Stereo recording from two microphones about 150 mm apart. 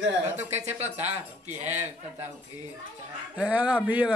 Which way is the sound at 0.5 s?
45° right (ahead or behind).